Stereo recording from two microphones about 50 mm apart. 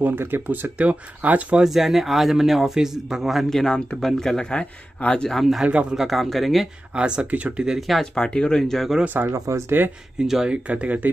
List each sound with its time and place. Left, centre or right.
0.2 s speech: right
1.6 s a man's voice: centre
3.4 s speech: centre
5.3 s a man's voice: centre
5.7 s speech: right
5.9 s a man's voice: centre
7.0 s speech: right
7.5 s speech: centre
8.0 s speech: centre
9.0 s speech: right
10.1 s speech: centre
10.5 s speech: right